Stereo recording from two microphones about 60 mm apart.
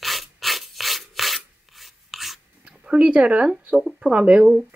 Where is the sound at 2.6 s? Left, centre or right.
Centre.